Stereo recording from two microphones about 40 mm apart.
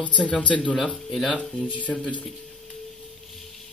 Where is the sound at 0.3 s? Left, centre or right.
Left.